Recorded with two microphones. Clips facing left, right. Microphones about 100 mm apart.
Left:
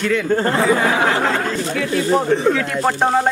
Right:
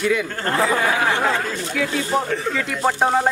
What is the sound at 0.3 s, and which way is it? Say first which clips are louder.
Speech: left 7 dB; 15° left (ahead or behind).